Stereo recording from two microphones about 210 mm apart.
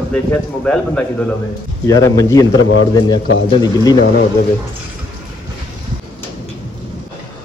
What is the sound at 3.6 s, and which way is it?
Speech, 20° left (ahead or behind).